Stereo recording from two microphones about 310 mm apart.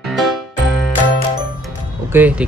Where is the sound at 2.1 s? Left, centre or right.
Centre.